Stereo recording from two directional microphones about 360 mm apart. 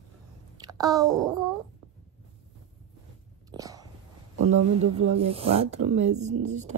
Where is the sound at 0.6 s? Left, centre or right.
Centre.